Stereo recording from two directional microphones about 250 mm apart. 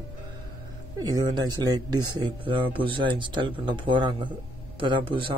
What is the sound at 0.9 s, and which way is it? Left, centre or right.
Speech, centre.